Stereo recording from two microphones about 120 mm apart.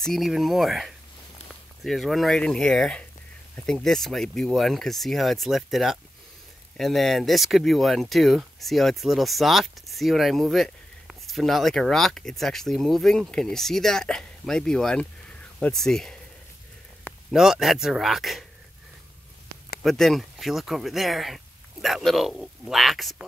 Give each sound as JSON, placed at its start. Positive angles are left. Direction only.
{"t": 0.0, "sound": "speech", "side_deg": 0}
{"t": 17.3, "sound": "speech", "side_deg": -5}
{"t": 19.8, "sound": "speech", "side_deg": 0}